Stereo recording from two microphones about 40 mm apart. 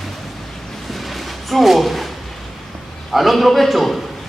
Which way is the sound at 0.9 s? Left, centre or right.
Centre.